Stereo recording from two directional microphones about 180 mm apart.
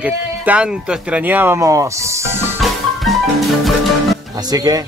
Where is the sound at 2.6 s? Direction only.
Centre (ahead or behind).